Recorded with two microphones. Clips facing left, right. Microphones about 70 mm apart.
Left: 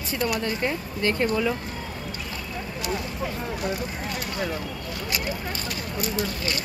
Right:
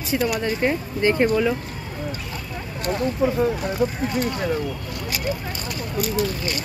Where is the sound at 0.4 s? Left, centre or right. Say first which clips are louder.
Right 5 dB; right.